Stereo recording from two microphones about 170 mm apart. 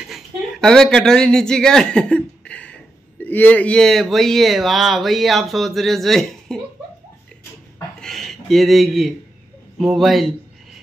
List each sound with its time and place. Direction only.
0.1 s speech: 5° left (ahead or behind)
8.0 s a sound: centre (ahead or behind)
9.8 s speech: centre (ahead or behind)